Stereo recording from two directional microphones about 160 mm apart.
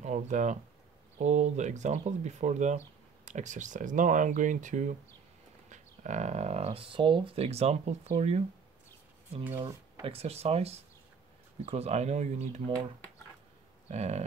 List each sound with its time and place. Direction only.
0.0 s speech: 50° right (ahead or behind)
10.0 s speech: 40° right (ahead or behind)
13.8 s speech: 45° right (ahead or behind)